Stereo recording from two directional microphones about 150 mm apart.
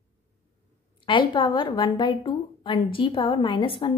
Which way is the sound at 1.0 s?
35° left (ahead or behind).